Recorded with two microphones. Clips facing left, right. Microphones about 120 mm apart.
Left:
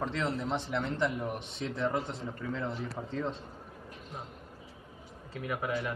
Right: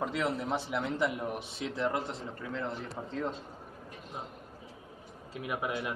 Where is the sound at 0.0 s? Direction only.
5° right (ahead or behind).